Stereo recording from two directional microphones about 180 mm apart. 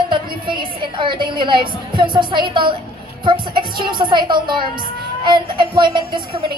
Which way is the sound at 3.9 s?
25° right (ahead or behind).